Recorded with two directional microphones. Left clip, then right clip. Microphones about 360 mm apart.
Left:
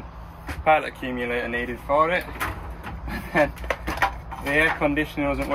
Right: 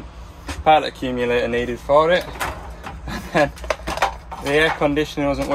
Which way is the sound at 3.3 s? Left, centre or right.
Right.